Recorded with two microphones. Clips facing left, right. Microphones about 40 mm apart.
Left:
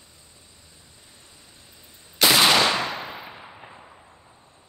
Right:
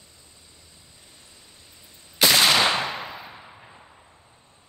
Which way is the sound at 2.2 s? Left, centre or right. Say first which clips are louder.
Left 1 dB; centre.